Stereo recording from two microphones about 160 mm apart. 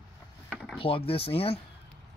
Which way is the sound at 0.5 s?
Centre (ahead or behind).